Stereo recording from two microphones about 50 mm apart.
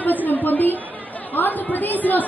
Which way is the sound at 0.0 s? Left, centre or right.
Left.